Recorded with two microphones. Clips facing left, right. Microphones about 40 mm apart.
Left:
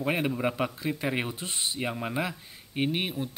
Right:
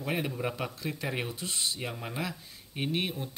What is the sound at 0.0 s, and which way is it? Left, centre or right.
A man's voice, left.